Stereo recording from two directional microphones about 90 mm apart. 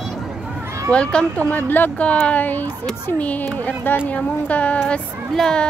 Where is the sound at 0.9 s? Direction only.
10° left (ahead or behind).